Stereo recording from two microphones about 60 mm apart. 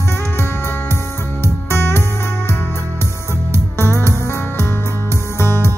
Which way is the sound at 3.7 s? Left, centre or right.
Left.